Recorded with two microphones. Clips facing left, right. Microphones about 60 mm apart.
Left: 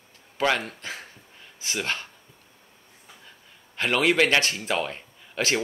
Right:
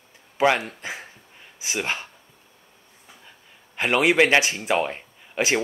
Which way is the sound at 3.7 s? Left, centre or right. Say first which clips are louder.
Right 2 dB; centre.